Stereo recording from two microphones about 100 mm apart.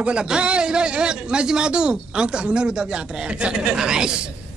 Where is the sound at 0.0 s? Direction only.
10° right (ahead or behind).